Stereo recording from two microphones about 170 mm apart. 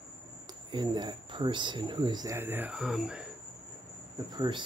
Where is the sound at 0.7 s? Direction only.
25° right (ahead or behind); by 3.2 s 5° right (ahead or behind).